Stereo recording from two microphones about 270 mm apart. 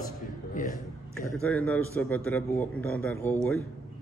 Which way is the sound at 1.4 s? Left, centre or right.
Centre.